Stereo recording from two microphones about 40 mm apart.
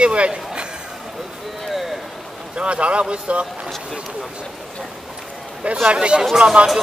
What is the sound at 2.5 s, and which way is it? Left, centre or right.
Speech, right.